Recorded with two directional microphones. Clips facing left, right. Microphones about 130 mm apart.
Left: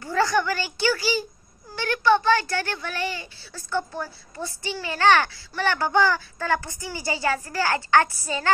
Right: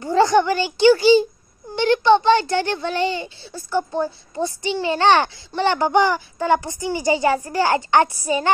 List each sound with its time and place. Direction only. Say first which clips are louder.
0.0 s a child's voice: right 7 dB; 20° right (ahead or behind)